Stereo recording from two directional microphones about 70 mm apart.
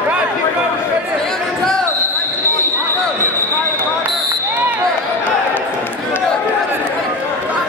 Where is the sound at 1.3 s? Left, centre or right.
Centre.